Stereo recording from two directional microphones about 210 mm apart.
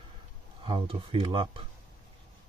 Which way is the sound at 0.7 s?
25° right (ahead or behind).